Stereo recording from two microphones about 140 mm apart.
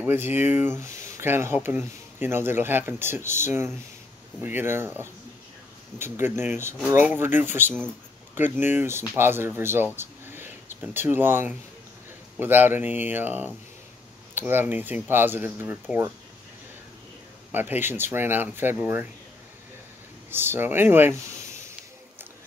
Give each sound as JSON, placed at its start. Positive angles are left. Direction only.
{"t": 0.0, "sound": "speech", "side_deg": -15}
{"t": 9.9, "sound": "a sound", "side_deg": -15}
{"t": 12.4, "sound": "speech", "side_deg": -15}
{"t": 17.5, "sound": "speech", "side_deg": -15}
{"t": 20.2, "sound": "speech", "side_deg": -15}